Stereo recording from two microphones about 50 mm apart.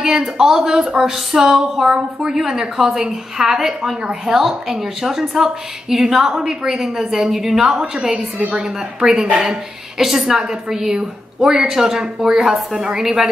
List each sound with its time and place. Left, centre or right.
0.2 s a woman's voice: centre
9.3 s speech: centre
9.9 s a woman's voice: centre